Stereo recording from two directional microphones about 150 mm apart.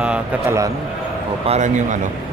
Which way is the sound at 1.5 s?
55° right (ahead or behind).